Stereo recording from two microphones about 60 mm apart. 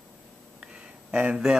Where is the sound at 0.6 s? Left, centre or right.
Centre.